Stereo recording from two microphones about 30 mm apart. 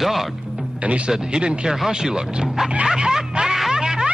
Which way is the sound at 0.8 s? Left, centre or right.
Right.